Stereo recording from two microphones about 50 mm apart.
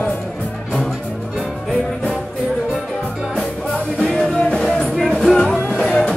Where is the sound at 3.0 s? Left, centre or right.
Centre.